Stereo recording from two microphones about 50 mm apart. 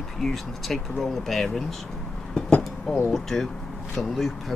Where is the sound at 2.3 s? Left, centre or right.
Centre.